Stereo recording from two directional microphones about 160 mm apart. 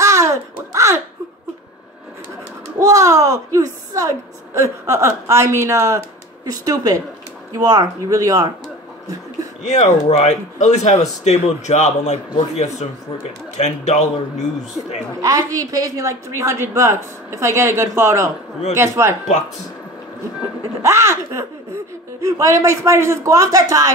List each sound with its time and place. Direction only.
0.0 s babbling: 20° right (ahead or behind)
2.8 s a woman's voice: 20° right (ahead or behind)
9.6 s speech: 45° left (ahead or behind)
15.1 s a woman's voice: 20° right (ahead or behind)
20.8 s a woman's voice: 15° right (ahead or behind)